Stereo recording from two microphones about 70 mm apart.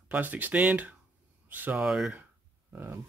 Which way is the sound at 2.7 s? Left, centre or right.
Right.